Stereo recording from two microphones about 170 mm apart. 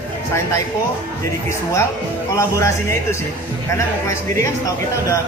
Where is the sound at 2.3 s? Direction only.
15° left (ahead or behind).